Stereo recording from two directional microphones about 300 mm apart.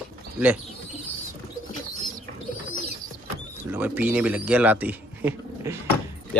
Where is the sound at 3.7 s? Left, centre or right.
Centre.